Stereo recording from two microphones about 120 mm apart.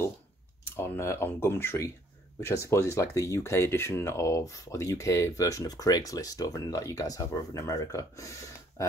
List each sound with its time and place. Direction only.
0.7 s speech: 20° left (ahead or behind)